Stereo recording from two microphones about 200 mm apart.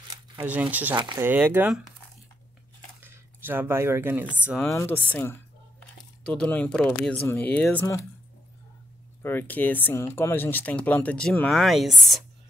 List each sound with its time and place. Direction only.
0.1 s speech: 10° right (ahead or behind)
0.9 s speech: 20° right (ahead or behind)
1.2 s speech: 10° right (ahead or behind)
3.0 s speech: 10° right (ahead or behind)
4.5 s speech: centre (ahead or behind)
9.2 s speech: 10° left (ahead or behind)